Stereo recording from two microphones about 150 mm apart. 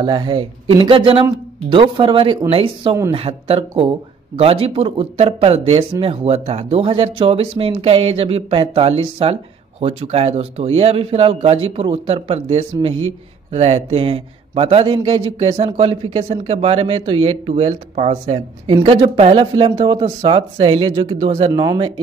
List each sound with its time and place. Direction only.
0.0 s speech: 30° right (ahead or behind)